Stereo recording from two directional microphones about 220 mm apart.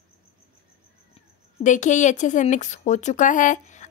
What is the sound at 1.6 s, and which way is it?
Speech, 35° left (ahead or behind).